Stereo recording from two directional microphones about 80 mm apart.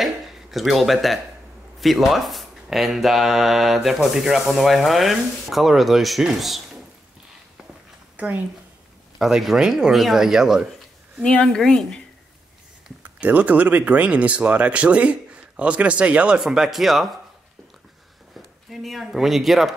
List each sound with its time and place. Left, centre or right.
0.0 s a sound: centre
1.8 s speech: centre
8.2 s speech: centre
9.2 s speech: centre
11.4 s speech: centre
13.0 s speech: centre
18.3 s speech: centre